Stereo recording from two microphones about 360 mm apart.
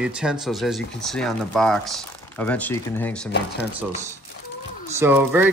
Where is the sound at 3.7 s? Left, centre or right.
Centre.